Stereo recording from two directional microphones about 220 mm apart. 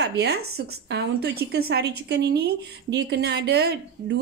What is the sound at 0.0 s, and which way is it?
A woman's voice, 50° right (ahead or behind).